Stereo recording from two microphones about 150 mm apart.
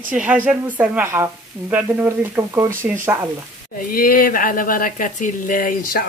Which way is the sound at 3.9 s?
75° left (ahead or behind).